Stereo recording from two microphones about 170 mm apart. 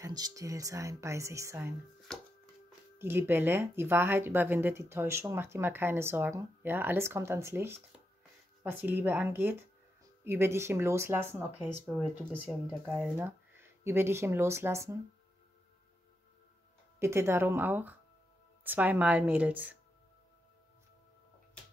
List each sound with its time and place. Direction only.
0.0 s a woman's voice: 20° right (ahead or behind)
3.0 s speech: 15° right (ahead or behind)
17.0 s speech: 15° right (ahead or behind)